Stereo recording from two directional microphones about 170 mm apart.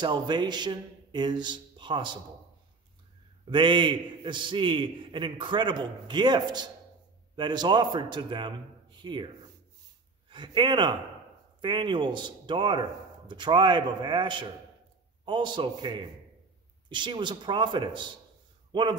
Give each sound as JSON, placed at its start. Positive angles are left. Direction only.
{"t": 0.0, "sound": "a man's voice", "side_deg": -25}
{"t": 3.4, "sound": "a man's voice", "side_deg": -30}
{"t": 10.3, "sound": "a man's voice", "side_deg": -30}